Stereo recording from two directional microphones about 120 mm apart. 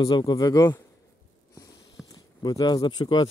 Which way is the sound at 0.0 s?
35° left (ahead or behind).